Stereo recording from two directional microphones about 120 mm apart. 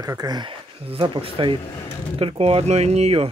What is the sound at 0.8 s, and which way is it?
Speech, 45° right (ahead or behind).